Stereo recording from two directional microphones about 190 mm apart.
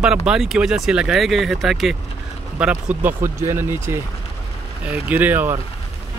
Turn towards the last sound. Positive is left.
turn(degrees=-10)  # may be behind; listen again after turning